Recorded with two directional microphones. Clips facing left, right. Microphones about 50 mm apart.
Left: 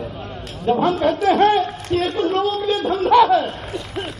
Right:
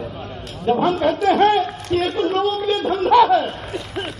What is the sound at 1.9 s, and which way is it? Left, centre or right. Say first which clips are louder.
A man's voice: even; right.